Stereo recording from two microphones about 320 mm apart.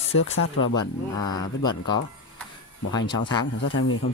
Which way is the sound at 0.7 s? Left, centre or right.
Centre.